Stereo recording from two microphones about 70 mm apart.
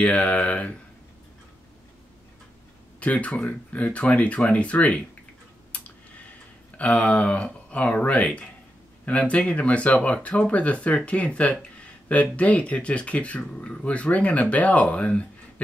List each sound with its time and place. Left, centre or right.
0.0 s speech: centre
3.0 s speech: centre
6.8 s speech: centre